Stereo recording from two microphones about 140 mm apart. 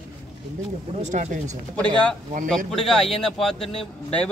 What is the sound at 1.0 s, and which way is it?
Speech, 60° right (ahead or behind).